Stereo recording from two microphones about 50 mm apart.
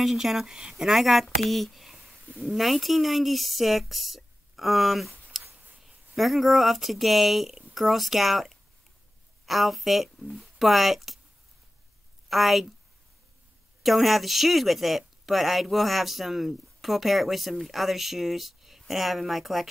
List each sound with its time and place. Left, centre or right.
0.0 s a woman's voice: centre
5.4 s a sound: right
5.8 s speech: centre
12.3 s a woman's voice: centre
13.8 s a woman's voice: centre